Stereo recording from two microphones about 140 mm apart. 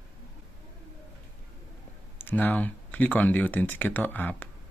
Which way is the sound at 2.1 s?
15° left (ahead or behind).